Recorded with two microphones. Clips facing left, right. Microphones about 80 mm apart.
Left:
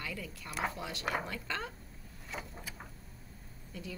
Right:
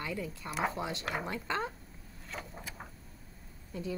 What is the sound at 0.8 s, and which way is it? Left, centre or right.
Speech, right.